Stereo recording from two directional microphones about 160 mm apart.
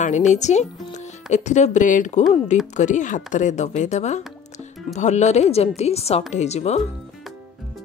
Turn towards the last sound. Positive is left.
turn(degrees=45)  # may be behind; listen again after turning